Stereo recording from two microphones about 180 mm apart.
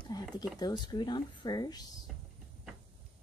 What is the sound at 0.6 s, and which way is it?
Speech, 25° left (ahead or behind).